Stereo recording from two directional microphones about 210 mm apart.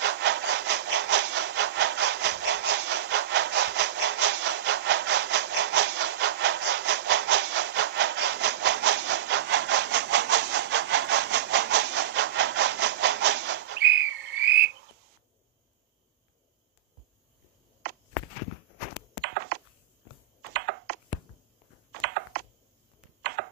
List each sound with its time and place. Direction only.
0.0 s sawing: 55° right (ahead or behind)
19.2 s a sound: 50° right (ahead or behind)
22.0 s computer keyboard: 50° right (ahead or behind)